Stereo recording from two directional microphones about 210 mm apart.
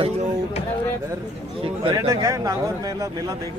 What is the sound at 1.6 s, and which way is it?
Speech, 25° right (ahead or behind).